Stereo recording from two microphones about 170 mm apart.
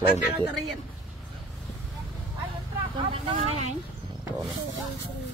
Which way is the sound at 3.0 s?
35° right (ahead or behind).